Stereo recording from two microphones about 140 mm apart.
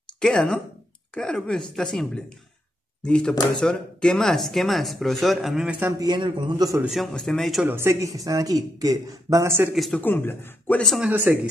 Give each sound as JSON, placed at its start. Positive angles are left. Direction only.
{"t": 0.0, "sound": "speech", "side_deg": 5}
{"t": 5.8, "sound": "speech", "side_deg": -25}
{"t": 6.8, "sound": "speech", "side_deg": 0}
{"t": 7.6, "sound": "speech", "side_deg": -20}
{"t": 9.8, "sound": "speech", "side_deg": 0}
{"t": 10.0, "sound": "speech", "side_deg": 15}
{"t": 10.8, "sound": "speech", "side_deg": 0}
{"t": 11.1, "sound": "speech", "side_deg": -10}